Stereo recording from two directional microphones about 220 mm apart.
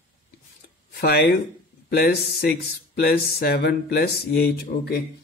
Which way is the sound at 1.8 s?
45° left (ahead or behind).